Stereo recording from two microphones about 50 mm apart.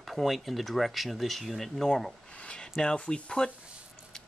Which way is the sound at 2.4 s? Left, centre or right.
Centre.